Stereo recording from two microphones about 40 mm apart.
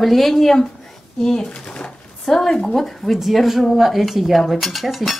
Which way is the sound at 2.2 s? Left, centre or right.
Centre.